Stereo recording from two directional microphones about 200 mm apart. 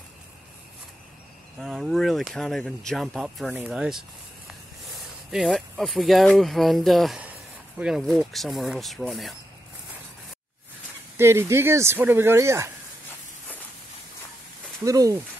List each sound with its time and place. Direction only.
1.6 s speech: centre (ahead or behind)
11.1 s speech: 15° right (ahead or behind)
14.9 s speech: 15° right (ahead or behind)